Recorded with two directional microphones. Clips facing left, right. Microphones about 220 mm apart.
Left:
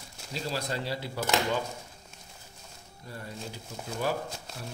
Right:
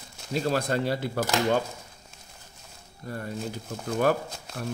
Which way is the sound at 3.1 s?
50° right (ahead or behind).